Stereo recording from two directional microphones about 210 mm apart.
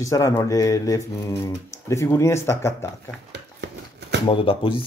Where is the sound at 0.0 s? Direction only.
15° left (ahead or behind).